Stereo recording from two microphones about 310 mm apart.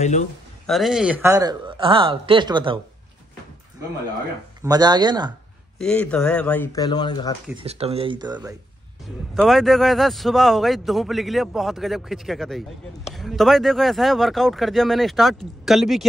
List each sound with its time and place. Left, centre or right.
0.0 s speech: left
0.7 s speech: centre
4.6 s speech: centre
5.8 s a man's voice: centre
7.5 s speech: centre
9.3 s a man's voice: centre